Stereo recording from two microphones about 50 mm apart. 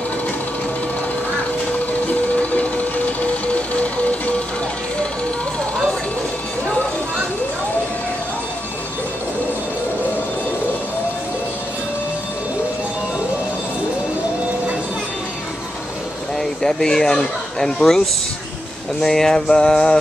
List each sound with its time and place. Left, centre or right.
2.0 s vehicle: left
16.3 s speech: centre
18.9 s a sound: centre